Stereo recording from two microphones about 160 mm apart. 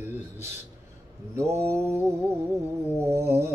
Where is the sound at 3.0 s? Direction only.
15° right (ahead or behind).